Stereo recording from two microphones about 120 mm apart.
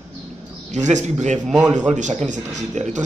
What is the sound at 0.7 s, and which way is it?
Speech, 80° right.